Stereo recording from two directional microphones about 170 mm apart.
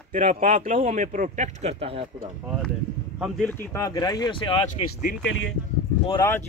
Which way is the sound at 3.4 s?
20° left (ahead or behind).